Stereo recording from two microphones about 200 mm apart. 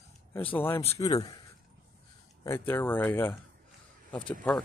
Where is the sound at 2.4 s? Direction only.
10° left (ahead or behind).